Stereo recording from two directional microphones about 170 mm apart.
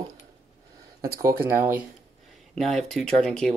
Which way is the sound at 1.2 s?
15° right (ahead or behind).